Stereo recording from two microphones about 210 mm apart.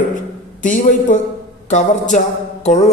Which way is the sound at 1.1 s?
40° left (ahead or behind).